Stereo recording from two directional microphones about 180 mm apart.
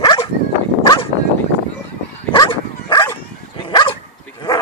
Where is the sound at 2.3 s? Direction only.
25° left (ahead or behind).